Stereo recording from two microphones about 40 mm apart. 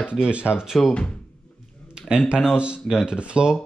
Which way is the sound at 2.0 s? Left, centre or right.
Right.